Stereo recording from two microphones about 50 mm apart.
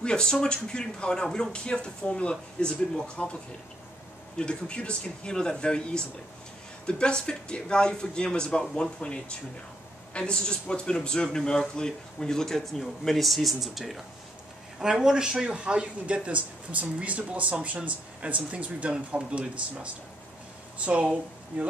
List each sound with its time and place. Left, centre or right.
0.0 s a man's voice: centre
4.4 s a man's voice: left; by 21.6 s right